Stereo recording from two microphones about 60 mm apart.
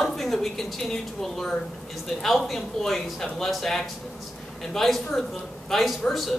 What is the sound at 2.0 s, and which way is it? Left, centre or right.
Speech, centre.